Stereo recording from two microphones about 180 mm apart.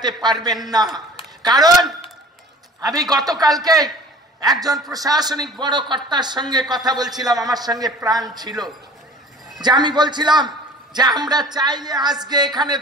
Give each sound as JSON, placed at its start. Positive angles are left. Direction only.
{"t": 0.0, "sound": "a man's voice", "side_deg": -25}